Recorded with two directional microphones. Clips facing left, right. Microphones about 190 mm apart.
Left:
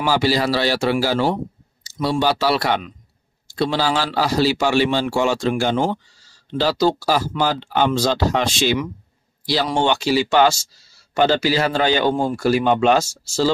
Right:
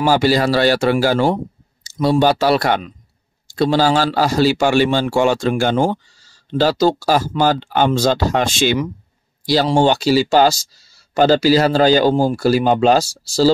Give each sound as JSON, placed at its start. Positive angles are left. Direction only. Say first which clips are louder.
{"t": 0.0, "sound": "a man's voice", "louder": "right 4 dB", "side_deg": -50}
{"t": 9.7, "sound": "speech", "louder": "right 4 dB", "side_deg": -35}